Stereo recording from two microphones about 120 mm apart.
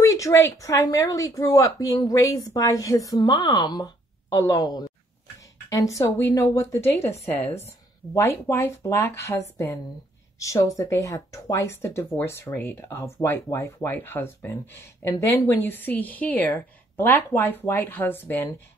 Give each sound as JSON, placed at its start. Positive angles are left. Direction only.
{"t": 0.0, "sound": "speech", "side_deg": 25}
{"t": 8.1, "sound": "speech", "side_deg": 25}